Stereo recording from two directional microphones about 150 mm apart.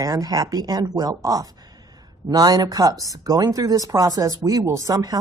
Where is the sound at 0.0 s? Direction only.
25° right (ahead or behind).